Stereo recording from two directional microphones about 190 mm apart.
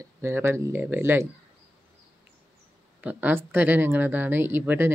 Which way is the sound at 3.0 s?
10° right (ahead or behind).